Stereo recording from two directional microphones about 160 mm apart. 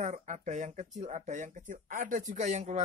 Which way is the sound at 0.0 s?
50° right (ahead or behind).